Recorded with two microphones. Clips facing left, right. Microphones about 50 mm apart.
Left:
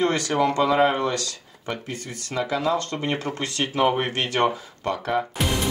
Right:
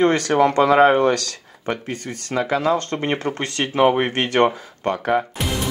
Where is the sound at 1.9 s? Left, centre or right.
Right.